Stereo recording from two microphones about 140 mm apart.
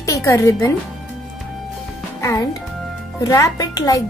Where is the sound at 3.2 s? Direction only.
25° left (ahead or behind).